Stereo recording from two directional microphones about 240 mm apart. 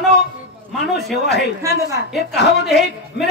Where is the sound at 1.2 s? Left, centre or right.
Left.